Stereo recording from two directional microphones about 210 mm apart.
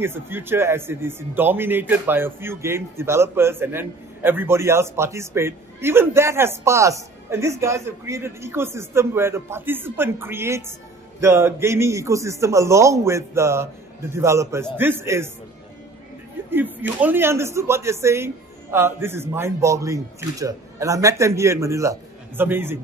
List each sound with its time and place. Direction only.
0.0 s a man's voice: 10° right (ahead or behind)
16.4 s a man's voice: 10° right (ahead or behind)